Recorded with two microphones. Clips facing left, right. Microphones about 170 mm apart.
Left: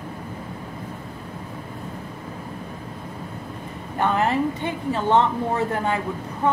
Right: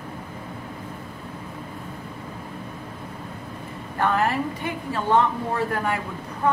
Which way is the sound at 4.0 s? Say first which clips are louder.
Left 2 dB; 20° left (ahead or behind).